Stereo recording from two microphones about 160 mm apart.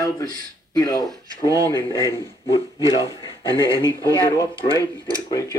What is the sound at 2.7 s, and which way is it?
A man's voice, 20° right (ahead or behind).